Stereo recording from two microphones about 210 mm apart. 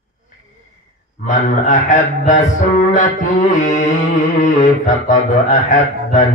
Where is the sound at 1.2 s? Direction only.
35° left (ahead or behind).